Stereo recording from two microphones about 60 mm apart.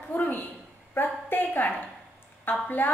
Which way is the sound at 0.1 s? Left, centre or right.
Left.